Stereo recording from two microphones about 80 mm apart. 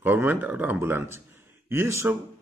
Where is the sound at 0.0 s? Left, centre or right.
Right.